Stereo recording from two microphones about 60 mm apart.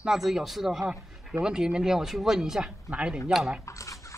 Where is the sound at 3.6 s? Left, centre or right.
Left.